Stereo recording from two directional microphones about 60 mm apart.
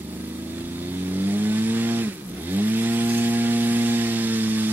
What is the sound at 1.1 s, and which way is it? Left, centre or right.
Vehicle, right.